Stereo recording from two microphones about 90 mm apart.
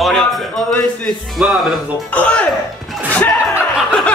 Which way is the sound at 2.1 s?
15° left (ahead or behind).